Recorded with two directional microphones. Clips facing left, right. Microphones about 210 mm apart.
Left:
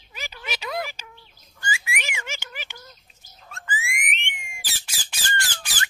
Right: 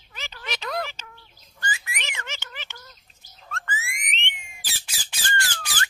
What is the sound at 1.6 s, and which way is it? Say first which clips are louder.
Bird: left 2 dB; 10° left (ahead or behind).